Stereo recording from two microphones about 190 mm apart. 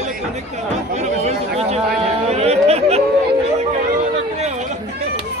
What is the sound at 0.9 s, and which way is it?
Speech, 35° right (ahead or behind).